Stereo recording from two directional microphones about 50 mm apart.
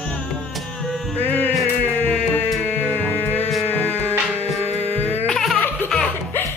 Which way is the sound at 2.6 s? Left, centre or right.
Left.